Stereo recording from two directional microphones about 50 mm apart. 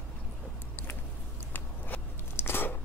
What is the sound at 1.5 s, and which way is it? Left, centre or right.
Biting, left.